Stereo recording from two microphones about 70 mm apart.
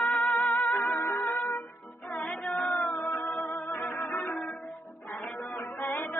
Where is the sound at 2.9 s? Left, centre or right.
Left.